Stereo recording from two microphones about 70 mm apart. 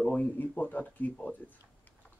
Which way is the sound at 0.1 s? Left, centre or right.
Left.